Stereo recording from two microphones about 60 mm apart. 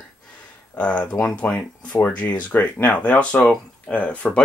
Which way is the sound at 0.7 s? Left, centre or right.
Left.